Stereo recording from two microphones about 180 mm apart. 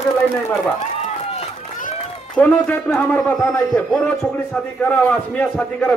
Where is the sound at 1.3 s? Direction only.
35° left (ahead or behind).